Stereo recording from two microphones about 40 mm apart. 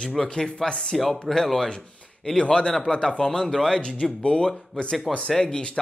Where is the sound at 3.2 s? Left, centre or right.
Centre.